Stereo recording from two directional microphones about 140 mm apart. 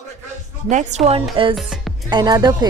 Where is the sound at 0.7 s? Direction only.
65° right (ahead or behind).